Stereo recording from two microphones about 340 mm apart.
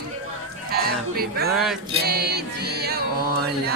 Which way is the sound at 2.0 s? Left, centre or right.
Right.